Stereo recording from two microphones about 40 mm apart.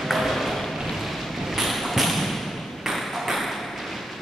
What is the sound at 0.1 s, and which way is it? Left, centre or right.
Ping, centre.